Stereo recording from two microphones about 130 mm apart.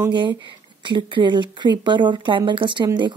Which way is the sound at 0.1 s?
35° right (ahead or behind).